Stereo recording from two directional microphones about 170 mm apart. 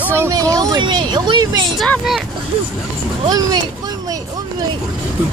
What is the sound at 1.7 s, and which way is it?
Speech, centre (ahead or behind).